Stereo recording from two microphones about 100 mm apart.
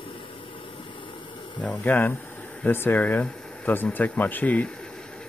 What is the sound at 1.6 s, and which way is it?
Speech, 15° left (ahead or behind).